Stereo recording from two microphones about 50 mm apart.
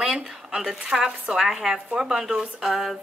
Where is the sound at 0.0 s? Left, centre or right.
Centre.